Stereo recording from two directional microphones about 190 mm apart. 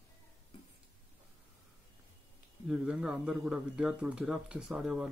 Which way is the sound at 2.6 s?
5° right (ahead or behind).